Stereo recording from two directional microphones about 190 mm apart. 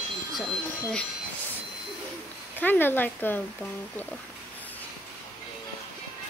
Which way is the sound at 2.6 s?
10° left (ahead or behind).